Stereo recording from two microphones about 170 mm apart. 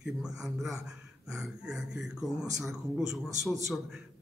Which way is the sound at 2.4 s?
20° right (ahead or behind).